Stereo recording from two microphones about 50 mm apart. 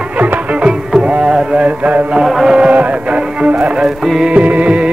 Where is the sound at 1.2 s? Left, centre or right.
Centre.